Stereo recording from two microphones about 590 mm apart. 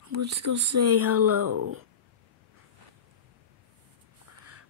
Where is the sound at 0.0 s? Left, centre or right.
Right.